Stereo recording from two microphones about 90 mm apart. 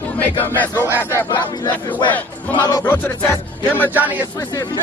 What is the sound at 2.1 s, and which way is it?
Speech, 20° left (ahead or behind).